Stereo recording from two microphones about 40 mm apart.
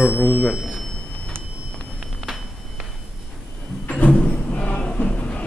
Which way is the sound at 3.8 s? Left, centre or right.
Left.